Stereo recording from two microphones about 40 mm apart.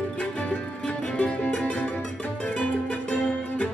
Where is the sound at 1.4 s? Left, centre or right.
Left.